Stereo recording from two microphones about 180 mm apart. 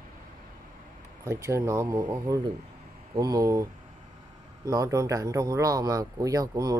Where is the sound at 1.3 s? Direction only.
15° right (ahead or behind).